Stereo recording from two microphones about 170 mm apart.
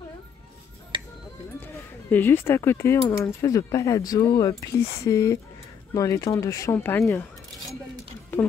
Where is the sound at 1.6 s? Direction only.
10° left (ahead or behind).